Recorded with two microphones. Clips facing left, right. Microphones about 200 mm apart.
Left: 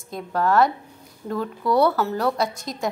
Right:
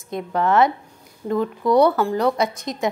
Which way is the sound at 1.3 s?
20° right (ahead or behind).